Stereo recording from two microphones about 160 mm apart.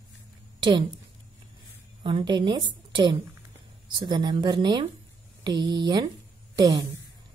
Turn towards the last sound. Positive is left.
turn(degrees=-25)  # may be behind; listen again after turning